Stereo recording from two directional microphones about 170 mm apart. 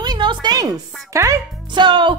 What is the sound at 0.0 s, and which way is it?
Speech, 25° right (ahead or behind).